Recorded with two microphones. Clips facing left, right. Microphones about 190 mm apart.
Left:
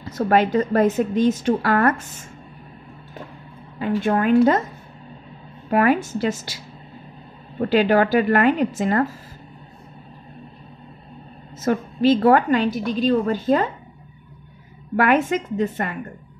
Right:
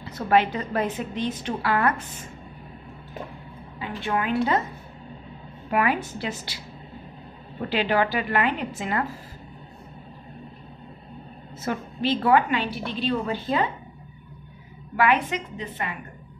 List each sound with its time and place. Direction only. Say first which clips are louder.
0.0 s a woman's voice: left 3 dB; 45° left (ahead or behind)
3.8 s a woman's voice: left 8 dB; 45° left (ahead or behind)
5.7 s a woman's voice: left 6 dB; 45° left (ahead or behind)
7.7 s a woman's voice: left 7 dB; 45° left (ahead or behind)
11.5 s a woman's voice: left 8 dB; 45° left (ahead or behind)
15.0 s a woman's voice: left 4 dB; 45° left (ahead or behind)